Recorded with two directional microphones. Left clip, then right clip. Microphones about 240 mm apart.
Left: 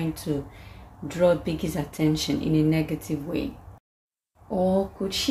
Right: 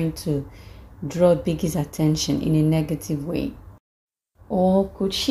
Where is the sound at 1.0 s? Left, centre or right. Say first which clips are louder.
Right 3 dB; centre.